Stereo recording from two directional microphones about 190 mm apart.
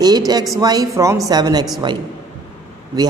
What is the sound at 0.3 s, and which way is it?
A man's voice, 20° right (ahead or behind).